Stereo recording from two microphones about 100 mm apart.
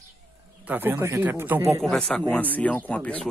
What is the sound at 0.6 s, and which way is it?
Speech, 20° right (ahead or behind).